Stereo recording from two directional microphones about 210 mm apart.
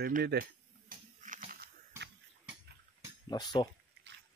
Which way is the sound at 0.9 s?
35° right (ahead or behind).